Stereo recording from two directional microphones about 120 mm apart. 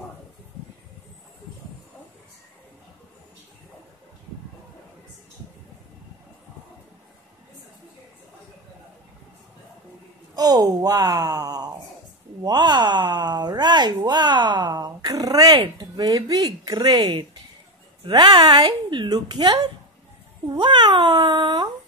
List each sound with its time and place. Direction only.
10.3 s speech: 30° right (ahead or behind)